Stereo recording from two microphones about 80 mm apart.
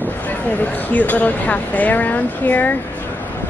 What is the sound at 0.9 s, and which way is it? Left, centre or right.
Speech, left.